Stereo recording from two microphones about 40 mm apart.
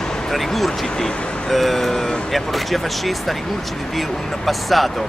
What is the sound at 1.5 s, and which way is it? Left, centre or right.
Speech, centre.